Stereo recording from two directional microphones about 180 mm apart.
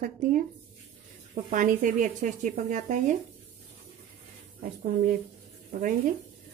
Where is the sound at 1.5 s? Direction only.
45° right (ahead or behind).